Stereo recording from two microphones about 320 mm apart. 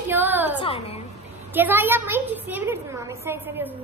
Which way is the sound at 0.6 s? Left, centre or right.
Centre.